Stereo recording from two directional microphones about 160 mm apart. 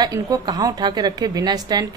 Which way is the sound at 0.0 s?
25° right (ahead or behind).